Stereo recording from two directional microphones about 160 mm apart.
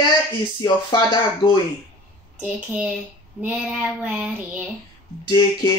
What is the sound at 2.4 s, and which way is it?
Child singing, 10° right (ahead or behind).